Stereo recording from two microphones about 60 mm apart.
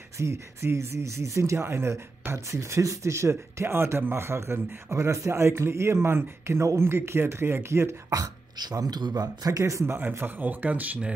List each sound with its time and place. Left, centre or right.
0.2 s speech: right
8.1 s speech: right
10.1 s speech: right